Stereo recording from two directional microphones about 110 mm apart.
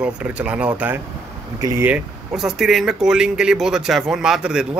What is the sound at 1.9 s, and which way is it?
Speech, 5° right (ahead or behind).